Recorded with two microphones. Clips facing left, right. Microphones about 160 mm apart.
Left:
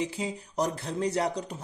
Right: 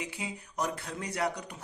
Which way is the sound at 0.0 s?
35° left (ahead or behind).